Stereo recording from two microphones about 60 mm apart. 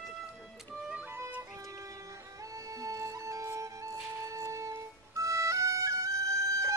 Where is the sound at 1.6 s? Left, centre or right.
Right.